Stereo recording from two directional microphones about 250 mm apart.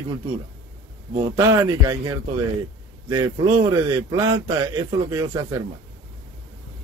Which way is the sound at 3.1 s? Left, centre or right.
Centre.